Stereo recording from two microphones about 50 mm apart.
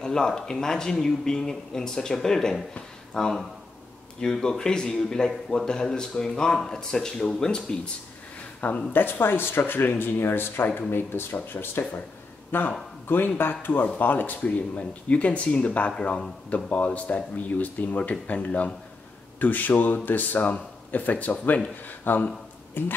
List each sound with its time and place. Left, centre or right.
0.0 s a man's voice: centre
8.5 s speech: left
8.9 s speech: left